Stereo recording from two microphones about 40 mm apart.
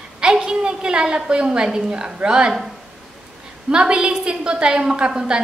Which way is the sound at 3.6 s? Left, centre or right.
Right.